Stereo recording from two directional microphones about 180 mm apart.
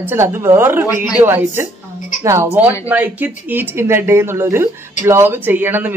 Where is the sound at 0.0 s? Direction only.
15° right (ahead or behind).